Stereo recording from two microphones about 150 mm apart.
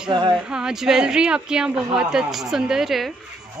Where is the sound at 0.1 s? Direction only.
30° right (ahead or behind).